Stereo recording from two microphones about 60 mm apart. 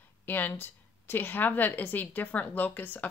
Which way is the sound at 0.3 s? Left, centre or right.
Left.